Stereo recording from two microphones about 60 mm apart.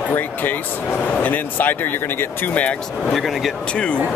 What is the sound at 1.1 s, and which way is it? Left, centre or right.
Speech, left.